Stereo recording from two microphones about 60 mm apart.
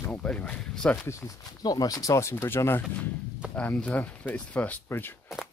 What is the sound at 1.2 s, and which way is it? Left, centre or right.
Speech, left.